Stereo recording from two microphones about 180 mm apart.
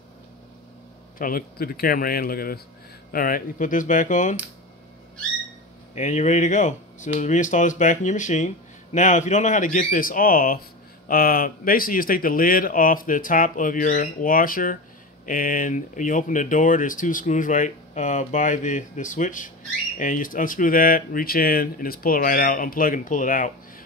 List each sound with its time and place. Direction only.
1.1 s speech: 50° left (ahead or behind)
5.9 s speech: 40° left (ahead or behind)